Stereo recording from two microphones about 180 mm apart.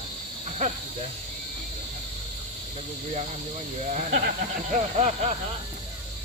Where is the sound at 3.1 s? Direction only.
40° right (ahead or behind).